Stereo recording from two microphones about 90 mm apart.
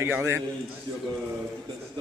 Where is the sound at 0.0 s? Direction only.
30° right (ahead or behind).